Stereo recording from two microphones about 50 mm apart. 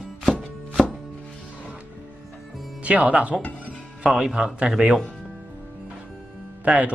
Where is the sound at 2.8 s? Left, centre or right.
Right.